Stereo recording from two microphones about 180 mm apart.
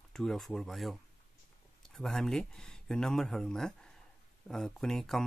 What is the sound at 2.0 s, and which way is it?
Speech, 5° left (ahead or behind).